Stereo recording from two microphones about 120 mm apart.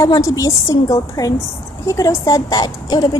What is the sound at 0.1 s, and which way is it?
A woman's voice, 25° left (ahead or behind).